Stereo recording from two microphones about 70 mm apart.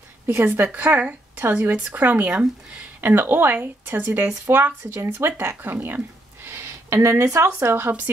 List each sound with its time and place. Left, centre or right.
0.3 s a woman's voice: right
7.6 s speech: right